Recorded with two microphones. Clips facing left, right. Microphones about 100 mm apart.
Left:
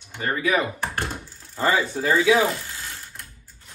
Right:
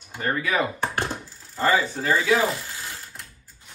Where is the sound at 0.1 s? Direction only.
Centre (ahead or behind).